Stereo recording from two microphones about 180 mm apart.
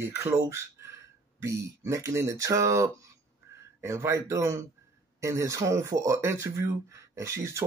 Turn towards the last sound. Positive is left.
turn(degrees=-15)  # may be behind; listen again after turning